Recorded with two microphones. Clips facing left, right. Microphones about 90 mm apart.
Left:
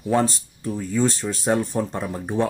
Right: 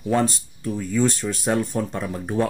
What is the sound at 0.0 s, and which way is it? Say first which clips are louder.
Speech: even; centre (ahead or behind).